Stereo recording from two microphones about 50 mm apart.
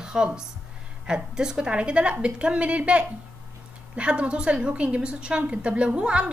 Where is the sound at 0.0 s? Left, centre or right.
Centre.